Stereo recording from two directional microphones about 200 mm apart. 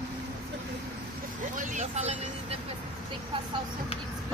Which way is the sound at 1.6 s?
35° right (ahead or behind).